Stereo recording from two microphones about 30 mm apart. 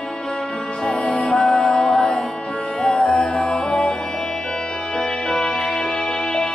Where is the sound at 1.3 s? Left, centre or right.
Centre.